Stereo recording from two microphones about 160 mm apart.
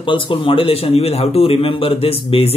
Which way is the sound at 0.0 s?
30° left (ahead or behind).